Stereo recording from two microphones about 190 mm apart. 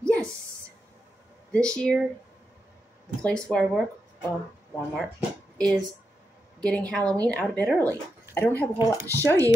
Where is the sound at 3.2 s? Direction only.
5° left (ahead or behind).